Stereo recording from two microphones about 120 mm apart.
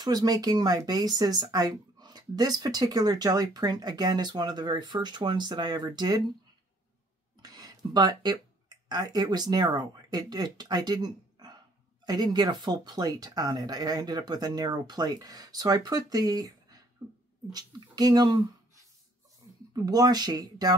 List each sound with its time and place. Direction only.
0.0 s speech: 35° right (ahead or behind)
7.4 s speech: 30° right (ahead or behind)